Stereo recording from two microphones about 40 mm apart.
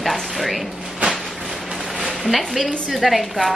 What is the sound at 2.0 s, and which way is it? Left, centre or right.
A woman's voice, centre.